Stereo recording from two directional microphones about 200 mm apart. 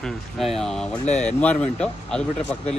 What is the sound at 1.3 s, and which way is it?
Speech, 5° left (ahead or behind).